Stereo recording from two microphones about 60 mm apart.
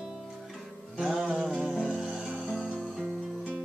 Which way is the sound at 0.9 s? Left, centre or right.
Centre.